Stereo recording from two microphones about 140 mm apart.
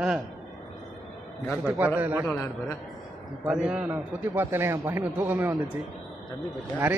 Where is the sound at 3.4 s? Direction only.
5° right (ahead or behind).